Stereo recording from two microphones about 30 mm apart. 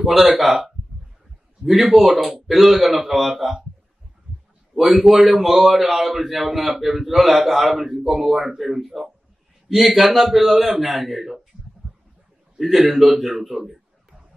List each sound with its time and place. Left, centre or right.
0.0 s a man's voice: centre
1.7 s a man's voice: centre
4.7 s a man's voice: centre
11.8 s a sound: right
12.5 s a man's voice: centre